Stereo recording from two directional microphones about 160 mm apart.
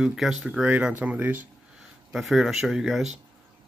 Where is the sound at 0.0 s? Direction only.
5° right (ahead or behind).